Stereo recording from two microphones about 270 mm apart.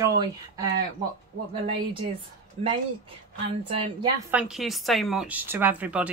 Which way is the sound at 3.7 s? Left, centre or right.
Centre.